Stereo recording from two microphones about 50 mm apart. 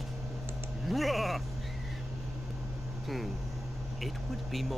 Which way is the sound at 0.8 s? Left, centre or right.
Centre.